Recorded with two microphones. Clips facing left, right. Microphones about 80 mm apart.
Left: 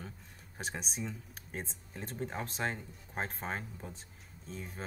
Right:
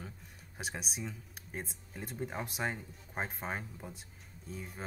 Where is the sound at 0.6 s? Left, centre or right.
Centre.